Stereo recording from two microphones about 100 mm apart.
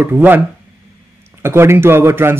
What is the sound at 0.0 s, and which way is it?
Speech, 20° right (ahead or behind).